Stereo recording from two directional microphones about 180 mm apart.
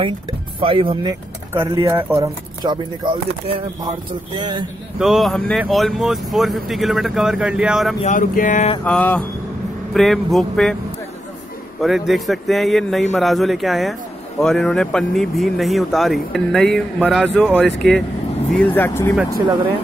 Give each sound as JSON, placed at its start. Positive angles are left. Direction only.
{"t": 0.0, "sound": "speech", "side_deg": -30}
{"t": 1.5, "sound": "speech", "side_deg": -15}
{"t": 4.9, "sound": "speech", "side_deg": 0}
{"t": 8.0, "sound": "speech", "side_deg": 45}
{"t": 8.8, "sound": "mantra", "side_deg": 10}
{"t": 9.9, "sound": "speech", "side_deg": 0}
{"t": 11.8, "sound": "speech", "side_deg": 0}
{"t": 18.8, "sound": "mantra", "side_deg": 15}